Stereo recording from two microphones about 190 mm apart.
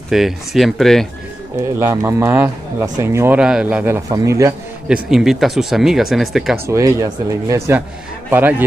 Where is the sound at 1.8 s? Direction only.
15° right (ahead or behind).